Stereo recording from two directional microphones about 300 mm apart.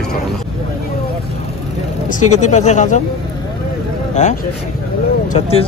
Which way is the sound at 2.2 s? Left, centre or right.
Left.